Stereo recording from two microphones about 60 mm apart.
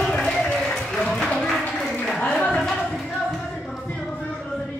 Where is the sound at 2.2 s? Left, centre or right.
Centre.